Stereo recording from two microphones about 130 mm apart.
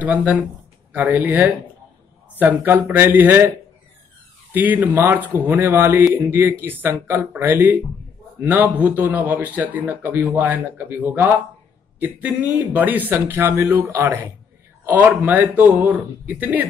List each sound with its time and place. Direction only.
0.0 s speech: 10° right (ahead or behind)